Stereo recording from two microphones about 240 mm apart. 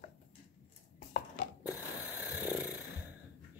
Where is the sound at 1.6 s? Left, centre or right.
Centre.